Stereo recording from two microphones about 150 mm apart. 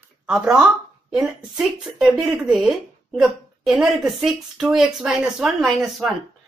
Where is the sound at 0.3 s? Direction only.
5° right (ahead or behind).